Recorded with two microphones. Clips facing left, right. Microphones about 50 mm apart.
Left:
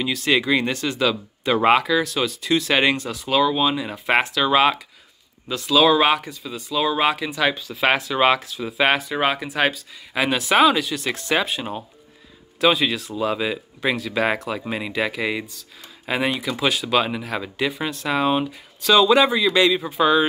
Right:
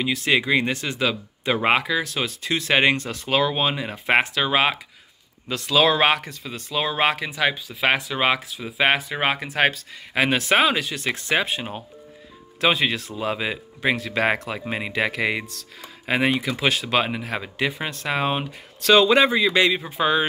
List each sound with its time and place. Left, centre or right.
0.0 s speech: right
2.0 s speech: right
3.1 s speech: right
5.5 s speech: right
6.7 s speech: right
7.2 s speech: centre
7.5 s speech: centre; by 13.9 s right
13.9 s speech: right
16.1 s speech: right
18.9 s speech: right